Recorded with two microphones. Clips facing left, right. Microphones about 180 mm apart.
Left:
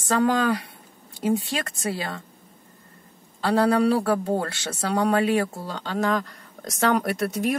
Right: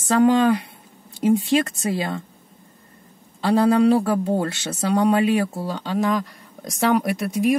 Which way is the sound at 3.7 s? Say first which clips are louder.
Right 4 dB; 15° right (ahead or behind).